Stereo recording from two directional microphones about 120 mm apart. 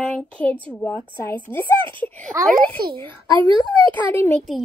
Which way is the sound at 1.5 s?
40° right (ahead or behind).